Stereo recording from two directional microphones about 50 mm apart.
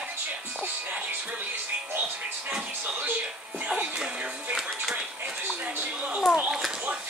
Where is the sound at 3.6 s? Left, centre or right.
Centre.